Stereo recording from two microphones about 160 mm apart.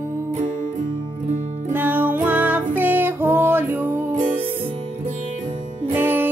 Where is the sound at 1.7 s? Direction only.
10° right (ahead or behind).